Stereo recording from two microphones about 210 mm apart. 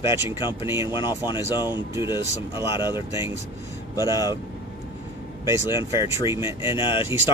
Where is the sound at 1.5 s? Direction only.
20° left (ahead or behind).